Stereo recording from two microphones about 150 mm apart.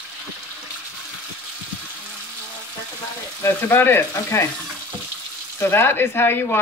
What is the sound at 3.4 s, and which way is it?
Speech, 15° left (ahead or behind).